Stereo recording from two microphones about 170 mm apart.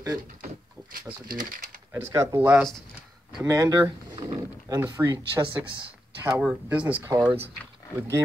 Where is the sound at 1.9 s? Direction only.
15° right (ahead or behind).